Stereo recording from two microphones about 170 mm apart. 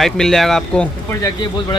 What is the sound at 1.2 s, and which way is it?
Speech, 25° left (ahead or behind).